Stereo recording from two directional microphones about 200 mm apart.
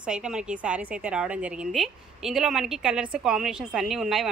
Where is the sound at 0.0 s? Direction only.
5° right (ahead or behind).